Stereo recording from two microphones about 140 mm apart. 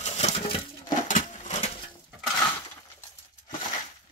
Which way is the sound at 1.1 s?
60° left (ahead or behind).